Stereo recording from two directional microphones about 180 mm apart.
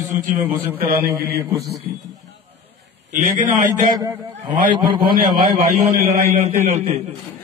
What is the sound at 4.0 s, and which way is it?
Speech, 20° right (ahead or behind).